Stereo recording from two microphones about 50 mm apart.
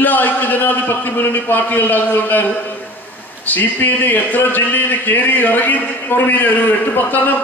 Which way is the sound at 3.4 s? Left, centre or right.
Left.